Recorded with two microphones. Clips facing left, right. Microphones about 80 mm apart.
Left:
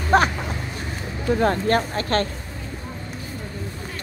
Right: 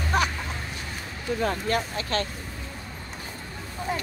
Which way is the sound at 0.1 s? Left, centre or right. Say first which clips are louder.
Left 8 dB; left.